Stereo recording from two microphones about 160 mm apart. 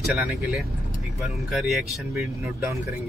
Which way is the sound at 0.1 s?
10° right (ahead or behind).